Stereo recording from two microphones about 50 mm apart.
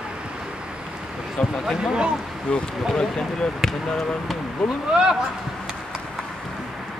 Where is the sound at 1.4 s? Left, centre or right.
Centre.